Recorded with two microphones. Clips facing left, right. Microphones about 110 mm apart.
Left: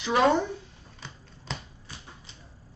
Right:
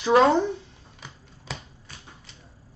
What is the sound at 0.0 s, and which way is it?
Speech, 35° right (ahead or behind).